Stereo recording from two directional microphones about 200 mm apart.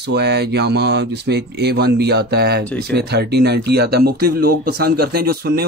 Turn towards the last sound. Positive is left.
turn(degrees=-50)  # may be behind; listen again after turning